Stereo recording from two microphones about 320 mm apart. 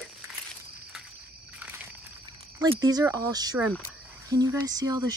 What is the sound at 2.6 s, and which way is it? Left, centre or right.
Speech, centre.